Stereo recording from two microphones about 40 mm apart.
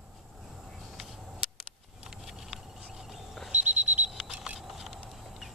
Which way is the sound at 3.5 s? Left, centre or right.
Right.